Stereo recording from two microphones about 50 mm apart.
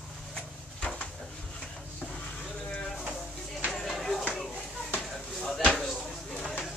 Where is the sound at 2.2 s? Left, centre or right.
Left.